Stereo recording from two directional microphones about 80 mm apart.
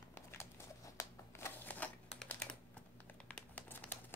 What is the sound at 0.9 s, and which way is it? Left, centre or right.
Shuffling cards, left.